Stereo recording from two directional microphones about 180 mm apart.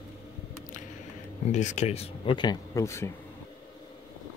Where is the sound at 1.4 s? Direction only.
40° left (ahead or behind); by 3.1 s 15° left (ahead or behind).